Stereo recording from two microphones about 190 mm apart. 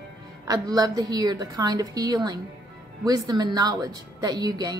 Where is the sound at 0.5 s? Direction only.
20° right (ahead or behind).